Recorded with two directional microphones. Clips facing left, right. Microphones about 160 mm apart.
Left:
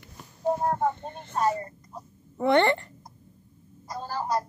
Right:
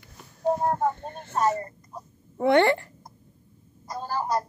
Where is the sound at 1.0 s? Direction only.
50° right (ahead or behind).